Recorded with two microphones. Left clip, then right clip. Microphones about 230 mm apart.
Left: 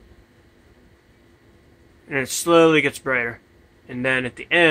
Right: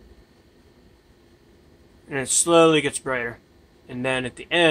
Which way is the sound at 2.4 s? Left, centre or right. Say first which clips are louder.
Left 2 dB; centre.